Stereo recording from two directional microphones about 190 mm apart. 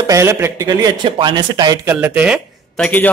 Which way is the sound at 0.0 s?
15° right (ahead or behind).